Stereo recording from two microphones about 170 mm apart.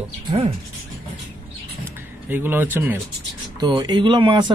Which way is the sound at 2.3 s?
10° right (ahead or behind).